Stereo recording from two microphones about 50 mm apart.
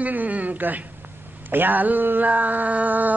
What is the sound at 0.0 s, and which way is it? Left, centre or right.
Speech, right.